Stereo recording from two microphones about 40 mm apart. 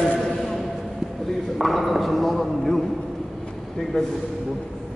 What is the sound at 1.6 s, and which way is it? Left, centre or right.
Speech, centre.